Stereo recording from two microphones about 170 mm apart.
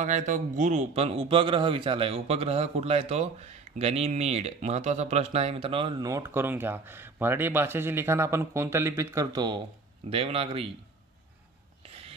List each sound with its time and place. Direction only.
0.0 s speech: 45° right (ahead or behind); by 9.6 s 25° right (ahead or behind)
10.0 s speech: 35° right (ahead or behind)